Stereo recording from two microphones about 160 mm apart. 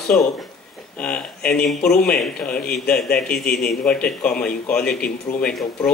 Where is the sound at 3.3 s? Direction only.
75° left (ahead or behind).